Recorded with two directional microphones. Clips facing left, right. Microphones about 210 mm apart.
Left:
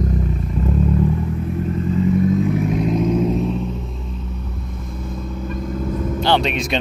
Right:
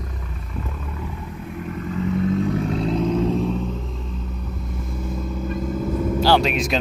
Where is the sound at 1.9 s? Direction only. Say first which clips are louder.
Left 4 dB; 15° left (ahead or behind).